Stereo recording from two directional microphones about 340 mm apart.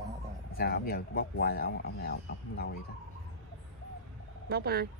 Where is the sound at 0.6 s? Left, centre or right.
Left.